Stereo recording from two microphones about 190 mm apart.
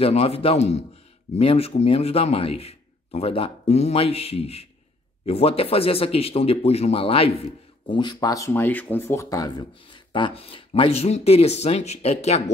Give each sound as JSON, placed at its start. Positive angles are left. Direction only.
{"t": 0.0, "sound": "a man's voice", "side_deg": 30}